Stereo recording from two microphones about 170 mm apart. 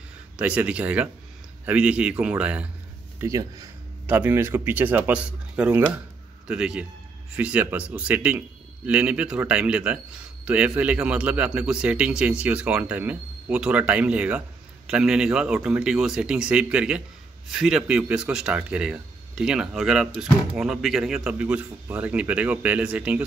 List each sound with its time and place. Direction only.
0.4 s speech: 5° right (ahead or behind)
3.2 s a man's voice: 20° right (ahead or behind)